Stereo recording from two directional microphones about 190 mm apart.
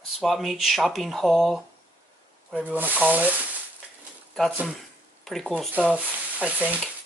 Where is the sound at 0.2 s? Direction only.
Centre (ahead or behind).